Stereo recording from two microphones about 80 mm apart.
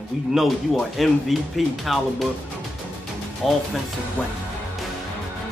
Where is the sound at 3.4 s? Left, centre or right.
Centre.